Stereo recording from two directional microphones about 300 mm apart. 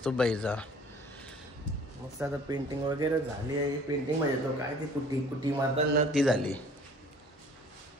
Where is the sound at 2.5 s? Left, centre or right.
Centre.